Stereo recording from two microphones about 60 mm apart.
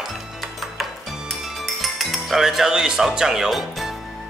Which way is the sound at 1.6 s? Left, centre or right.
Centre.